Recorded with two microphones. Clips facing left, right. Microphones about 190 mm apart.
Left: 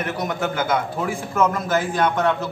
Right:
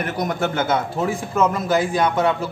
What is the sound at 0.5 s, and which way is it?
Speech, 25° right (ahead or behind).